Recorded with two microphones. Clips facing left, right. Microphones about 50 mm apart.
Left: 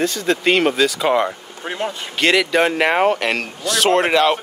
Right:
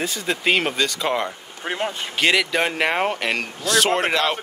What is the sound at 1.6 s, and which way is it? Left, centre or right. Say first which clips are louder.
Speech: left 1 dB; centre.